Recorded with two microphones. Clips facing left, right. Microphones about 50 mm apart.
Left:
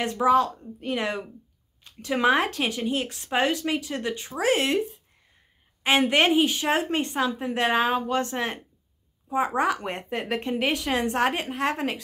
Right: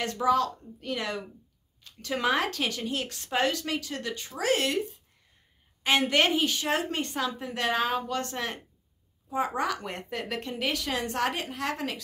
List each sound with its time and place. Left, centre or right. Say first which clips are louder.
0.0 s a woman's voice: left 4 dB; left
5.9 s a woman's voice: left 3 dB; left
9.6 s a woman's voice: left 5 dB; left